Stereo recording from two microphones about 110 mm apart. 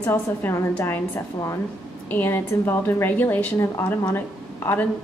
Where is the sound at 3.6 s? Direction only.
35° left (ahead or behind).